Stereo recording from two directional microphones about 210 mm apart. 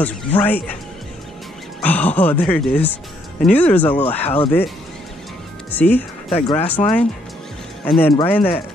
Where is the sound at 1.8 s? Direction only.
5° left (ahead or behind).